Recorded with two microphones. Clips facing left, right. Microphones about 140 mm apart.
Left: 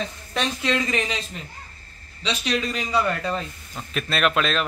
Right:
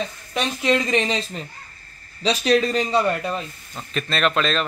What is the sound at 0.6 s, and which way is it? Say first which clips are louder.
Speech: right 7 dB; 20° right (ahead or behind).